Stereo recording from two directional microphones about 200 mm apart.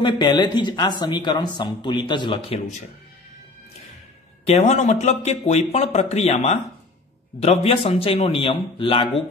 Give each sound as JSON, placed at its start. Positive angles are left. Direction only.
{"t": 0.0, "sound": "speech", "side_deg": 20}
{"t": 4.5, "sound": "speech", "side_deg": 35}